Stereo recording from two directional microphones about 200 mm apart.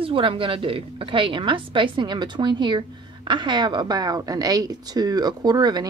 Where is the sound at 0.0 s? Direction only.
25° right (ahead or behind).